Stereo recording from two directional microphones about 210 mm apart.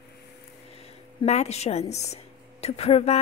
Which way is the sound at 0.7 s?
30° left (ahead or behind).